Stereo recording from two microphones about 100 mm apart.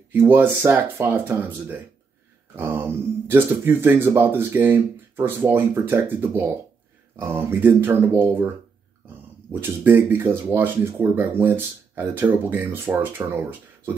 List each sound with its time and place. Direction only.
0.1 s speech: 20° right (ahead or behind)